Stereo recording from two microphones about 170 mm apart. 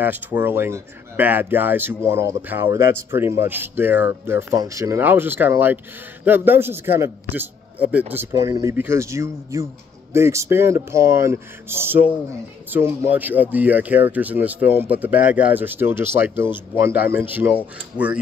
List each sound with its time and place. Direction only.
0.0 s speech: 10° right (ahead or behind)